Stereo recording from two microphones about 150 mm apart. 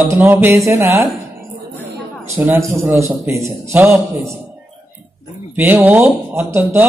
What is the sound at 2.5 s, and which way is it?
A man's voice, 20° right (ahead or behind).